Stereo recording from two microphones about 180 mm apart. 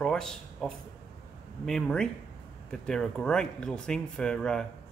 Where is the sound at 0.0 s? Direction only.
5° left (ahead or behind).